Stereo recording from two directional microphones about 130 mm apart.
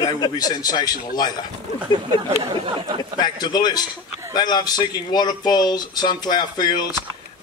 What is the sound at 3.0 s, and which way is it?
A man's voice, 30° left (ahead or behind).